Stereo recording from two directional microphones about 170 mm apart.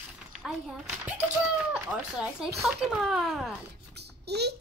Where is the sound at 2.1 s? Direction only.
5° right (ahead or behind).